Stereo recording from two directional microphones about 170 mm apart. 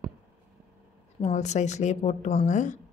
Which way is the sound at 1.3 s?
45° left (ahead or behind).